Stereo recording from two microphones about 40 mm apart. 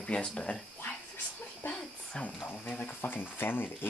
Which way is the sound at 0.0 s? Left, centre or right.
Left.